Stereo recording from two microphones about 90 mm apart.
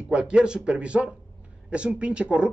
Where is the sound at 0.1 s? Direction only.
10° right (ahead or behind).